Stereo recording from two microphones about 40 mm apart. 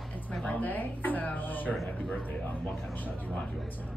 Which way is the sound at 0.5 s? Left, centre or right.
Left.